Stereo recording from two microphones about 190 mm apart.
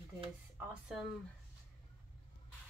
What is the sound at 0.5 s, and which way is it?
Speech, centre (ahead or behind).